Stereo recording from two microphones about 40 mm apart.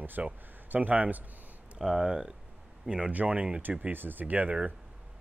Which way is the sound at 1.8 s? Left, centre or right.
Centre.